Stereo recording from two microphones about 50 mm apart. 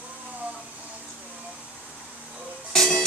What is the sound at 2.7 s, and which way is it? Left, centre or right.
Music, centre.